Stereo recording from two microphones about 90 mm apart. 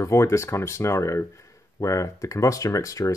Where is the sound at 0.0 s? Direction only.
35° left (ahead or behind).